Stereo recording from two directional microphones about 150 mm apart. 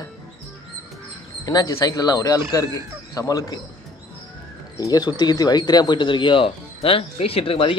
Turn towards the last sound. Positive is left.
turn(degrees=35)  # may be behind; listen again after turning